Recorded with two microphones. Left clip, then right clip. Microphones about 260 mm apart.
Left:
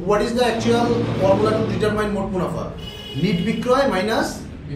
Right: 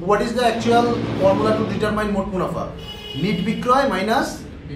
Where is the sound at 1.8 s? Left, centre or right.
Centre.